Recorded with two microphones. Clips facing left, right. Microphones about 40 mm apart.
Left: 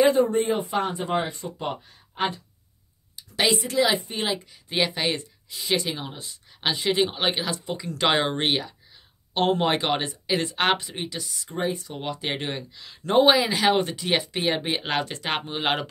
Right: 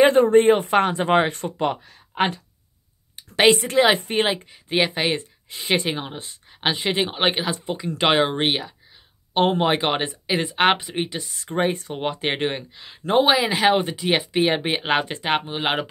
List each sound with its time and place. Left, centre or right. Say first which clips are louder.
0.0 s speech: right 6 dB; right
3.2 s a woman's voice: right 7 dB; right
4.6 s speech: right 4 dB; right
5.5 s speech: right 3 dB; right; by 8.7 s centre
9.3 s speech: right 3 dB; right
11.9 s speech: right 5 dB; right
13.2 s speech: left 1 dB; centre
13.5 s speech: right 3 dB; centre